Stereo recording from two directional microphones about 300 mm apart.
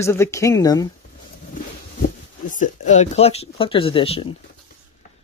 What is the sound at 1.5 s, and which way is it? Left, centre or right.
Speech, left.